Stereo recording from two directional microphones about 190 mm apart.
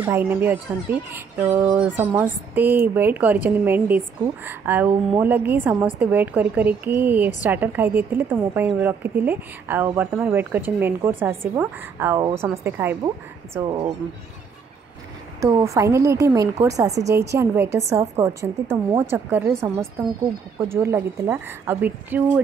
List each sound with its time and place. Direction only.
0.0 s a woman's voice: 10° right (ahead or behind)
13.7 s speech: 25° right (ahead or behind)
15.4 s a woman's voice: 15° right (ahead or behind)